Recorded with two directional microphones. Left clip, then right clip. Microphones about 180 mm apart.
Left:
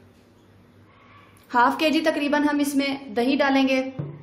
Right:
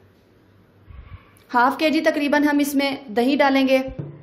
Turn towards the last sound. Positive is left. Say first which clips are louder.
# right 3 dB
turn(degrees=-30)  # may be behind; listen again after turning